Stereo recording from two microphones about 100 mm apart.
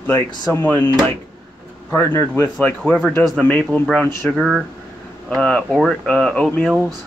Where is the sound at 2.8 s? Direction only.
10° left (ahead or behind).